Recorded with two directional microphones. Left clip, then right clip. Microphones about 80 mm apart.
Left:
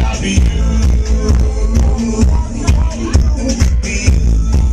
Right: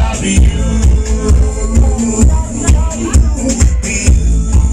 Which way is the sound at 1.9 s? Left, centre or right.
Left.